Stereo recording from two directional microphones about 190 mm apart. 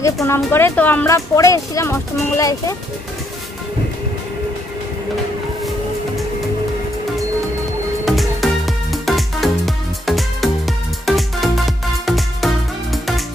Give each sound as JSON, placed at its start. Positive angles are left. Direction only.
{"t": 0.0, "sound": "speech", "side_deg": 15}
{"t": 8.0, "sound": "music", "side_deg": 0}